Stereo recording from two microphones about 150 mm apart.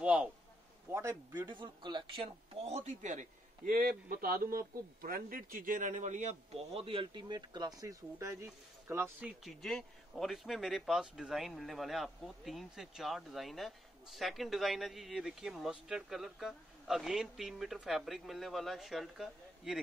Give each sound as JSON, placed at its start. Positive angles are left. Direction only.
{"t": 0.0, "sound": "a sound", "side_deg": -10}
{"t": 0.9, "sound": "speech", "side_deg": -20}
{"t": 4.1, "sound": "a man's voice", "side_deg": -75}